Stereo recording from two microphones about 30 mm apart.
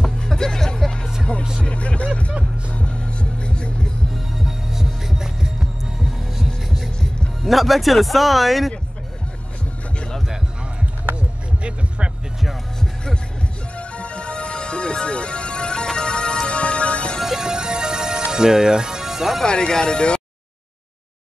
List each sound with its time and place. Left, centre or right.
0.2 s music: centre
1.6 s music: left
4.1 s heart sounds: centre
7.4 s speech: centre
11.1 s a sound: right
13.7 s music: left
17.2 s music: centre
17.5 s music: right
18.3 s speech: centre
19.0 s music: centre
19.8 s speech: left